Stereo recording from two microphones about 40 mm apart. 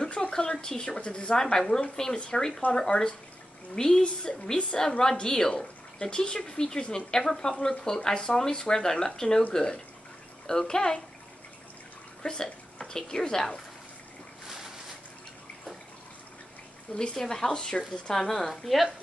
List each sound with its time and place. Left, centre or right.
0.3 s speech: left
12.2 s a woman's voice: left
17.1 s speech: centre
18.6 s speech: centre